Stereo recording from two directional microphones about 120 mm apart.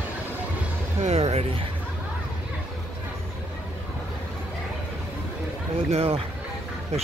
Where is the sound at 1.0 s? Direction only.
60° right (ahead or behind).